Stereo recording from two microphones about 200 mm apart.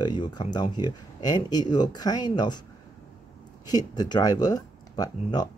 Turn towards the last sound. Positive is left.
turn(degrees=20)  # may be behind; listen again after turning